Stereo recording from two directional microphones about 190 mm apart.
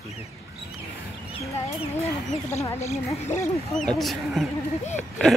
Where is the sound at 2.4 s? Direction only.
15° left (ahead or behind).